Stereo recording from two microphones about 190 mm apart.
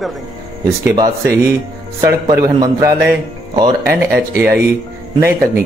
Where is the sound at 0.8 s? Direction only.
15° right (ahead or behind).